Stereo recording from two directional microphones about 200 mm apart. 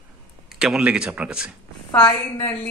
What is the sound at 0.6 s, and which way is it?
Speech, 5° right (ahead or behind).